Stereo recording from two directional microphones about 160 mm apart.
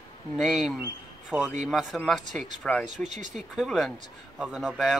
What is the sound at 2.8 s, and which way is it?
Speech, 50° right (ahead or behind).